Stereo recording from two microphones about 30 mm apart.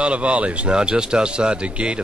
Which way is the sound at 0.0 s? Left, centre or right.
Right.